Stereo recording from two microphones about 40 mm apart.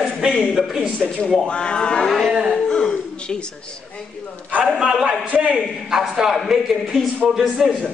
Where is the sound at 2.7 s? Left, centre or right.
Centre.